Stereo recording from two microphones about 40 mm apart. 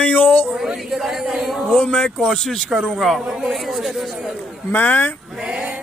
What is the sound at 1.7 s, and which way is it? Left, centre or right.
A man's voice, left.